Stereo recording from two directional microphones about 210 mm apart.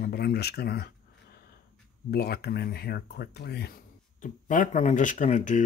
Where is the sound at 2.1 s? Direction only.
50° left (ahead or behind).